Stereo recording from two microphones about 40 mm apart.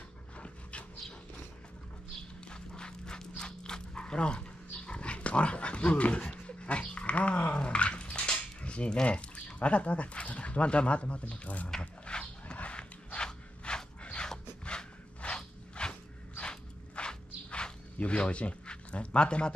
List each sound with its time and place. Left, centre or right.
0.4 s dog: left
2.5 s dog: left
11.8 s dog: left
12.5 s a sound: left